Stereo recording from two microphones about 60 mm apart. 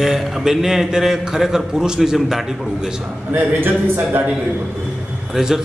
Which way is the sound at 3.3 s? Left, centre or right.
Right.